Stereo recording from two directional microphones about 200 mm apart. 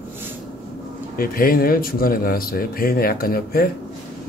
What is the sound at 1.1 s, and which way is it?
A man's voice, 45° left (ahead or behind).